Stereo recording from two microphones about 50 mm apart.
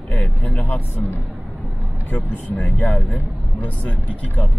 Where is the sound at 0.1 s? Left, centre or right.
Left.